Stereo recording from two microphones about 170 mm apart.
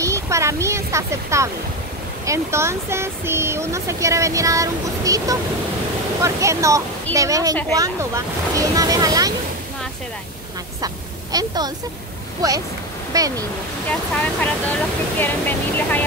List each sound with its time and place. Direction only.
0.0 s speech: 15° right (ahead or behind)
11.3 s speech: 25° right (ahead or behind)
13.8 s speech: 10° left (ahead or behind)